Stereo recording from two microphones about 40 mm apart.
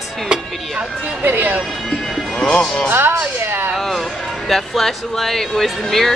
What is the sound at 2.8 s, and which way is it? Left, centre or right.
Speech, right.